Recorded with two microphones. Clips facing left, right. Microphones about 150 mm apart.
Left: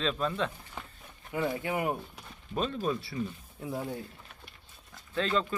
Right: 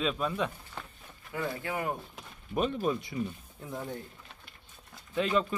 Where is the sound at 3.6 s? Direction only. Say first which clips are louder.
Left 3 dB; 5° left (ahead or behind).